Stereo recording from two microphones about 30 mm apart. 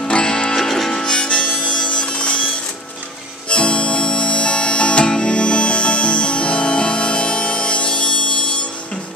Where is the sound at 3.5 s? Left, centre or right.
Left.